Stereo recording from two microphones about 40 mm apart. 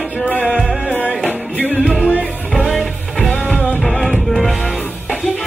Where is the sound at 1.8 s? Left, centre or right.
Right.